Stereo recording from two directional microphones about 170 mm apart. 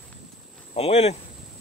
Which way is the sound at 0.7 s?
40° left (ahead or behind).